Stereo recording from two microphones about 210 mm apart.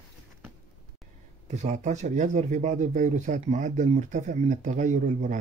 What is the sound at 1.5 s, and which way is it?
Speech, 35° right (ahead or behind).